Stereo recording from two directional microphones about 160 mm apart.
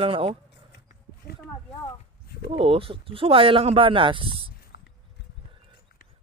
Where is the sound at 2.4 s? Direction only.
35° right (ahead or behind).